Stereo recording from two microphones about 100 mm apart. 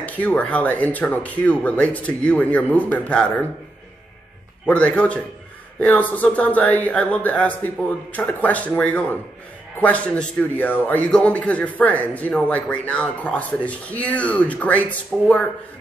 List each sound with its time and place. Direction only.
0.0 s a man's voice: 15° left (ahead or behind)
4.6 s a man's voice: 10° left (ahead or behind)